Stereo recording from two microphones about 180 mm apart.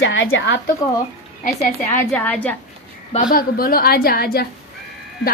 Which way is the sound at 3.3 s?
55° left (ahead or behind).